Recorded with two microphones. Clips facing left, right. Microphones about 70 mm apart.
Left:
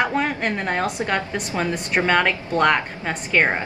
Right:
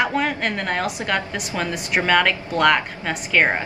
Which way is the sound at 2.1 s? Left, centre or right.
Centre.